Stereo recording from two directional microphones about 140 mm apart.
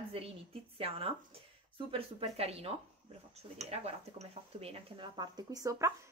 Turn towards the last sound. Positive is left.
turn(degrees=-25)  # may be behind; listen again after turning